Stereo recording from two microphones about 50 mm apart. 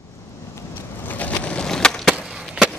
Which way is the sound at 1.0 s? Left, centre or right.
Left.